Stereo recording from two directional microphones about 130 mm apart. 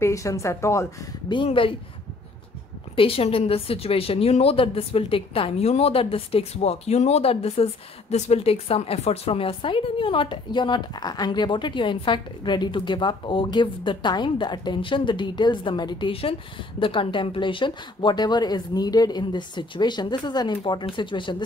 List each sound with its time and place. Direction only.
0.0 s a woman's voice: 25° left (ahead or behind)
1.3 s a woman's voice: 40° left (ahead or behind)
3.0 s a woman's voice: 45° left (ahead or behind)